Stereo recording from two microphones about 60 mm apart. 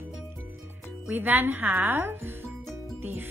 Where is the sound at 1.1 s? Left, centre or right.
Right.